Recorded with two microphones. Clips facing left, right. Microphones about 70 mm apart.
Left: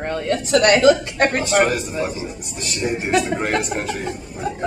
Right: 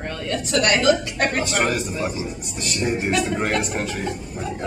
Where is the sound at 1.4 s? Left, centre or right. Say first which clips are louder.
Left 4 dB; centre.